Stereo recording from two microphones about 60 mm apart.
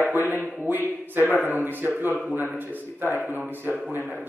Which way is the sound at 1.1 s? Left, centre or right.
Right.